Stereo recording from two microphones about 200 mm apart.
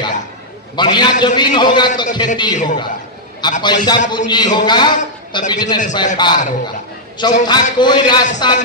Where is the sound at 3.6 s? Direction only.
20° left (ahead or behind).